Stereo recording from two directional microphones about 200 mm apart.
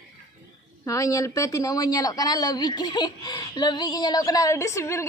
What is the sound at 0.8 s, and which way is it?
A woman's voice, 15° left (ahead or behind).